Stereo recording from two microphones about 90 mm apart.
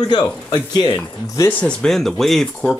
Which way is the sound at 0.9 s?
40° left (ahead or behind).